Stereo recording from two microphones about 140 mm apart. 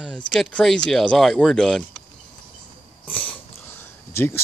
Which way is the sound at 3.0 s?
10° left (ahead or behind).